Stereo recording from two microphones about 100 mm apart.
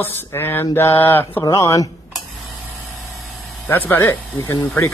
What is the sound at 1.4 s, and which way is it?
Speech, 35° left (ahead or behind).